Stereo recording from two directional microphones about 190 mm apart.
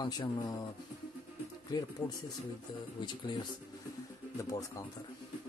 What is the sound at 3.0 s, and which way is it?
Speech, 25° left (ahead or behind).